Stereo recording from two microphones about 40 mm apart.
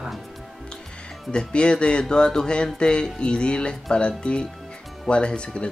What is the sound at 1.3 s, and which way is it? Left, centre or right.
Speech, left.